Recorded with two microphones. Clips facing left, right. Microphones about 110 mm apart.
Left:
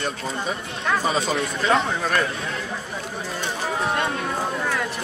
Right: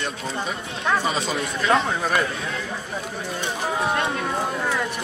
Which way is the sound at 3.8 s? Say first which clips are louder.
Even; centre (ahead or behind).